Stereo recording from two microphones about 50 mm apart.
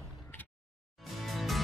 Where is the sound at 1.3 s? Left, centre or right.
Centre.